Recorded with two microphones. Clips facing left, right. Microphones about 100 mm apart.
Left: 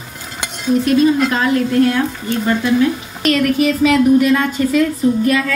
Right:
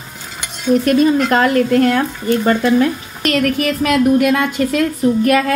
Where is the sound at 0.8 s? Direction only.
55° right (ahead or behind).